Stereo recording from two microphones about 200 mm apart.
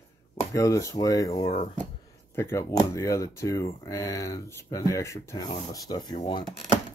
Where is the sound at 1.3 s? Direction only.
30° left (ahead or behind).